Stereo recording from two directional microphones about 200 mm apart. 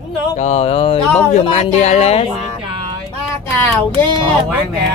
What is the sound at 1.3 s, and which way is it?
Speech, 35° left (ahead or behind).